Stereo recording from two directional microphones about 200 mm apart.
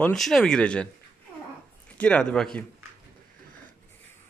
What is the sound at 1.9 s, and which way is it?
Speech, 5° left (ahead or behind).